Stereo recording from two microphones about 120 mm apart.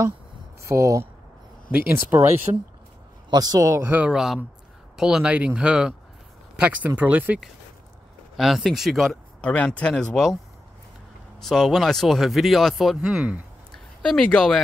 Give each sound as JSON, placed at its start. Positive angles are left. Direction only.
{"t": 0.7, "sound": "speech", "side_deg": -25}
{"t": 2.5, "sound": "speech", "side_deg": -40}
{"t": 3.9, "sound": "speech", "side_deg": -10}
{"t": 8.4, "sound": "speech", "side_deg": -5}
{"t": 11.4, "sound": "speech", "side_deg": 0}
{"t": 14.0, "sound": "speech", "side_deg": 5}